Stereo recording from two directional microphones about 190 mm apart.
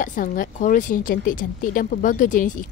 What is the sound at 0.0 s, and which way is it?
A woman's voice, 45° left (ahead or behind).